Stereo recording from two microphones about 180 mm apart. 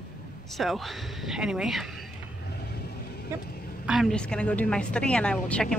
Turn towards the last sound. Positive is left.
turn(degrees=5)  # may be behind; listen again after turning